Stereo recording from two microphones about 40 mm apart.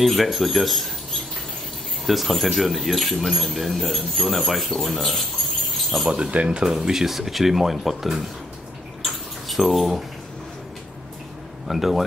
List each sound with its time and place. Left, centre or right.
0.0 s speech: centre
6.0 s speech: right
6.7 s speech: centre
9.0 s a sound: centre
11.6 s speech: centre